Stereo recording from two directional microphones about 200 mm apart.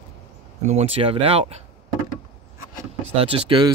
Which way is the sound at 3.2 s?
30° right (ahead or behind).